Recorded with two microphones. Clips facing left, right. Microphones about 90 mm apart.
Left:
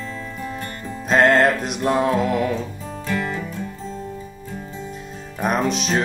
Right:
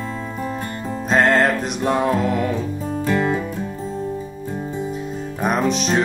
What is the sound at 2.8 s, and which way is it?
Music, 35° right (ahead or behind).